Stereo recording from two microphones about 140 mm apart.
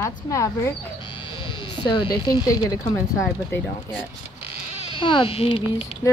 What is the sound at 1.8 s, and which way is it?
Speech, 30° left (ahead or behind).